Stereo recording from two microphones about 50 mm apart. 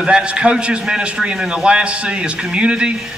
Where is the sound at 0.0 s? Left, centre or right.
Centre.